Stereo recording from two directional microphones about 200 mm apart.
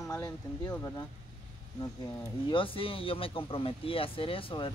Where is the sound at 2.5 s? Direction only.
25° left (ahead or behind).